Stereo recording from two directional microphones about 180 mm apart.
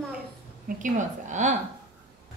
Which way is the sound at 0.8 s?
45° right (ahead or behind).